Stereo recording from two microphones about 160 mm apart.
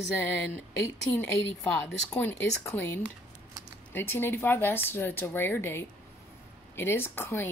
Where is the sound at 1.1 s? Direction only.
5° left (ahead or behind).